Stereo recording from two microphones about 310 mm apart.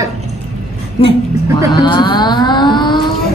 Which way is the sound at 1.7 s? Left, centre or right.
Centre.